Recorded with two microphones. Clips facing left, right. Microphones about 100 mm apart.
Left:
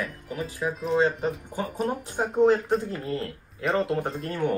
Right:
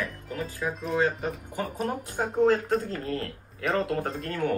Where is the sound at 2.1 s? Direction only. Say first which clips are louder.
Left 2 dB; 20° left (ahead or behind).